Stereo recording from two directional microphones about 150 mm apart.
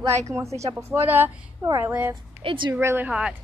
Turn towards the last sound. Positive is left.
turn(degrees=-5)  # may be behind; listen again after turning